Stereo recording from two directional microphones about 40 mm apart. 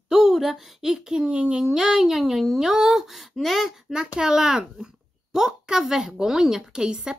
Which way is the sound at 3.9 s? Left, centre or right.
Centre.